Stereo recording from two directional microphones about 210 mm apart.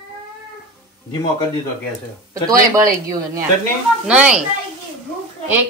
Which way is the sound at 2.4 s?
15° right (ahead or behind).